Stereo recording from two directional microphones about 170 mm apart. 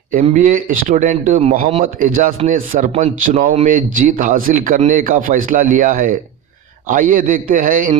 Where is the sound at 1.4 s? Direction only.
35° right (ahead or behind).